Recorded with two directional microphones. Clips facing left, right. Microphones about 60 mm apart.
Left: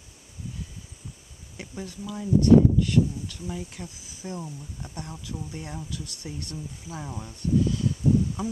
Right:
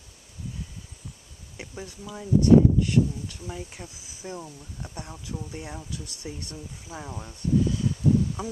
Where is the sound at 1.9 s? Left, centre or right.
Centre.